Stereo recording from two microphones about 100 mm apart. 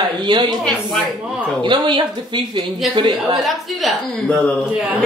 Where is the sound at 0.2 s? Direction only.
50° right (ahead or behind).